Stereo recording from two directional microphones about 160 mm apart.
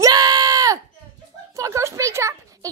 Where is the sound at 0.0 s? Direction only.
25° right (ahead or behind).